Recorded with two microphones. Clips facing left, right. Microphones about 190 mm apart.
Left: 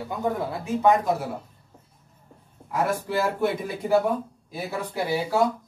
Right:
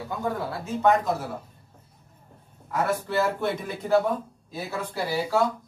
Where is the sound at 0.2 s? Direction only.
15° left (ahead or behind).